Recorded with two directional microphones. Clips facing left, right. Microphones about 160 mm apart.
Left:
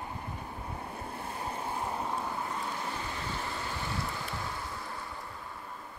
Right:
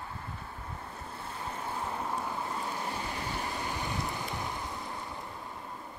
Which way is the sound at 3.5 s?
15° right (ahead or behind).